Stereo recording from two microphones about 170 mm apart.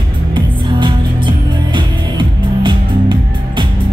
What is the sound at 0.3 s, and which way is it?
Music, 30° right (ahead or behind).